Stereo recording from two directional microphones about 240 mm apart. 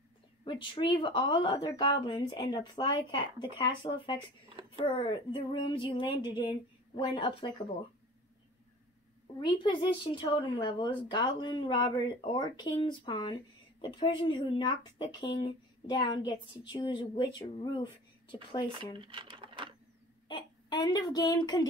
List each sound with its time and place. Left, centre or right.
0.5 s speech: centre
9.4 s speech: centre
18.7 s speech: right
20.2 s a sound: centre